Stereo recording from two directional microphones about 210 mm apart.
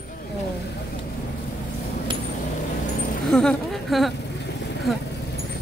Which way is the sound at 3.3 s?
Centre (ahead or behind).